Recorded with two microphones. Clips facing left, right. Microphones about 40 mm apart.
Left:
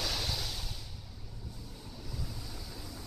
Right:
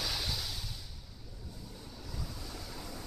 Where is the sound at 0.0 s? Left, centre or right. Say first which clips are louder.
Left 1 dB; centre.